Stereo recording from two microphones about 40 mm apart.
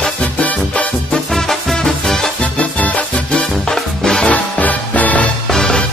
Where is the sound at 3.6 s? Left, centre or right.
Centre.